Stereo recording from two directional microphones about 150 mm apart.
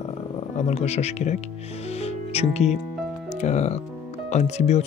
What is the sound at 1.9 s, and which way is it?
Music, 45° left (ahead or behind).